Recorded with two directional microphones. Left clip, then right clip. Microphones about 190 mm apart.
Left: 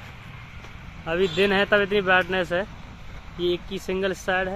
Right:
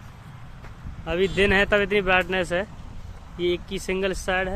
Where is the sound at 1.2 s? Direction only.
45° right (ahead or behind).